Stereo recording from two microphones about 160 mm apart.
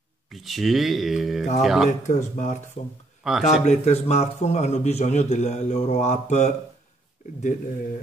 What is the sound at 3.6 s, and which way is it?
A man's voice, 45° left (ahead or behind).